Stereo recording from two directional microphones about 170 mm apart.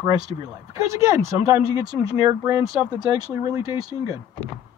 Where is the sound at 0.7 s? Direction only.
20° right (ahead or behind).